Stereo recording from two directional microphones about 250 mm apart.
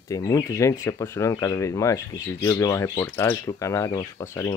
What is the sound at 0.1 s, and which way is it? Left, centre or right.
Speech, centre.